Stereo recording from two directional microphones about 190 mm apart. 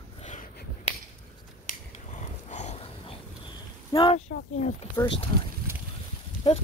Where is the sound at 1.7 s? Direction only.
40° left (ahead or behind).